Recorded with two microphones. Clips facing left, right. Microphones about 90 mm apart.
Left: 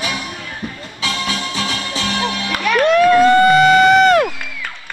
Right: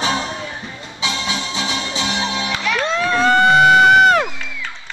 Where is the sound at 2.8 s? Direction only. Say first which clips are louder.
Left 11 dB; 20° right (ahead or behind).